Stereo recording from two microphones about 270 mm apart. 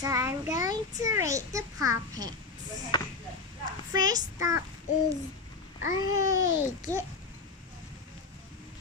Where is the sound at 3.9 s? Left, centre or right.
Centre.